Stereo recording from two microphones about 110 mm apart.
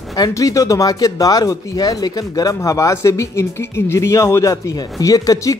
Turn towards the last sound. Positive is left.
turn(degrees=30)  # may be behind; listen again after turning